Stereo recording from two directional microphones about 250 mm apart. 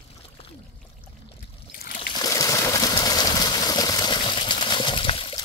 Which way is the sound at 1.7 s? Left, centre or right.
Left.